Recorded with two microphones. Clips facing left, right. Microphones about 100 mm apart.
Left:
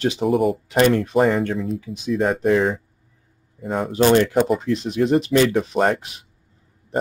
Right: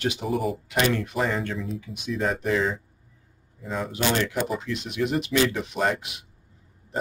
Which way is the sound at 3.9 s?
45° left (ahead or behind).